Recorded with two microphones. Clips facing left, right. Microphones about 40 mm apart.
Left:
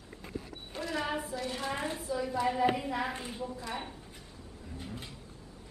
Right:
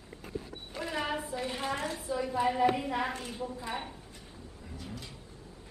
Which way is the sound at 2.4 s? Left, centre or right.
Centre.